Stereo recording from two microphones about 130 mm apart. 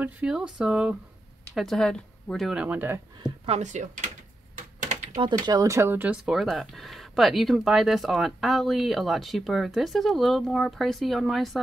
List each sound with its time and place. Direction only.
0.0 s speech: 5° right (ahead or behind)
2.5 s speech: 10° right (ahead or behind)
3.4 s speech: 60° right (ahead or behind)
5.1 s speech: 35° right (ahead or behind); by 6.3 s 15° right (ahead or behind)
6.3 s speech: centre (ahead or behind)